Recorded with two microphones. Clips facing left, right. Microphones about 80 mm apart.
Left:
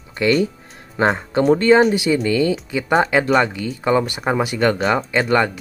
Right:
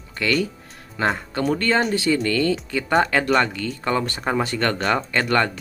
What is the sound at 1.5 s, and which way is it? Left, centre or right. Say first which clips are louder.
Speech: left 8 dB; centre.